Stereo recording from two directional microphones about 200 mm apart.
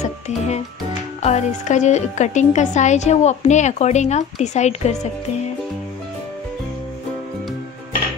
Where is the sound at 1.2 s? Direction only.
35° left (ahead or behind).